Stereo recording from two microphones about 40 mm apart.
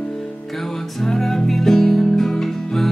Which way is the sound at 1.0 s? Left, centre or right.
Centre.